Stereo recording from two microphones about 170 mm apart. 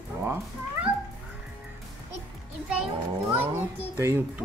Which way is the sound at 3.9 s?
15° right (ahead or behind).